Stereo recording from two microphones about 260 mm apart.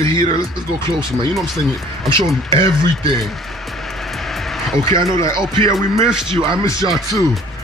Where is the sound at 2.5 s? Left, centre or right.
Centre.